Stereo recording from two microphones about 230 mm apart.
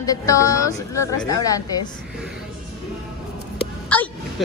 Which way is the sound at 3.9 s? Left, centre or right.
Centre.